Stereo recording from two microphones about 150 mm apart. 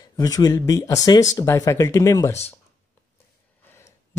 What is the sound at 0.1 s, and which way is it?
Speech, 25° left (ahead or behind).